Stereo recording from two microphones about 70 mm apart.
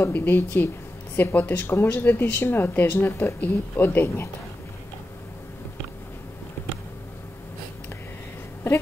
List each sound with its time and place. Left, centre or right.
0.0 s speech: left